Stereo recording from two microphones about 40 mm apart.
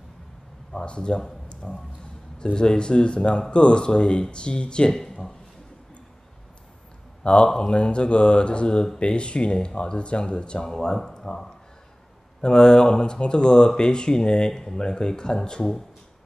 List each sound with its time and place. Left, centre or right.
0.7 s speech: left
1.6 s speech: centre
2.3 s speech: left
4.9 s speech: centre
7.2 s speech: left